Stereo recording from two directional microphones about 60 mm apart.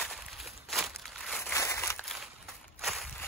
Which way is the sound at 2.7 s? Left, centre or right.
Centre.